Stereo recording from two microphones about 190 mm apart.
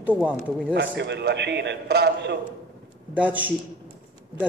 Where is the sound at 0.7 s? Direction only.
65° right (ahead or behind).